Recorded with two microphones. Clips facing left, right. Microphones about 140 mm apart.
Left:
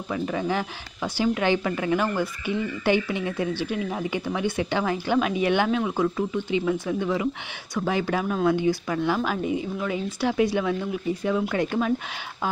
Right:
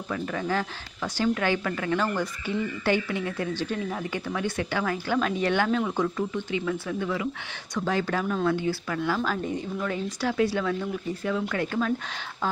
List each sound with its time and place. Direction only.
0.1 s speech: 15° left (ahead or behind)
6.5 s speech: 20° left (ahead or behind)